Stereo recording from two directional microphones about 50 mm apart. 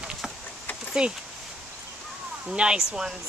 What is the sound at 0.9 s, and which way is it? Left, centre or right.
Speech, centre.